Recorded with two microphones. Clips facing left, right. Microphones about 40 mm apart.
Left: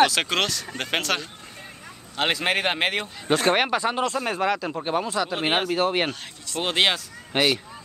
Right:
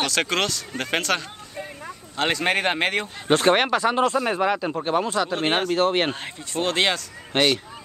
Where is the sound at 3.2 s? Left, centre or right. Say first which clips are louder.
Right 3 dB; centre.